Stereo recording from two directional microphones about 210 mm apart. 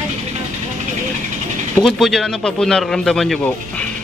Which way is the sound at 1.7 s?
Centre (ahead or behind).